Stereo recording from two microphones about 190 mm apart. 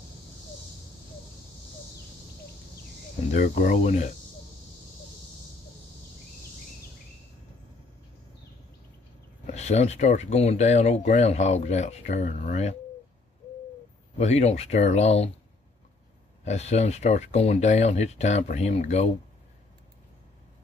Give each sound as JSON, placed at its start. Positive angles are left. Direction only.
{"t": 3.3, "sound": "speech", "side_deg": 45}
{"t": 9.5, "sound": "speech", "side_deg": 35}
{"t": 14.1, "sound": "speech", "side_deg": 35}
{"t": 16.4, "sound": "speech", "side_deg": 35}